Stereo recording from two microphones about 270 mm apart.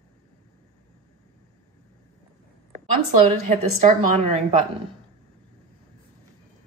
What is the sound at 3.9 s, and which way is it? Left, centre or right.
Speech, right.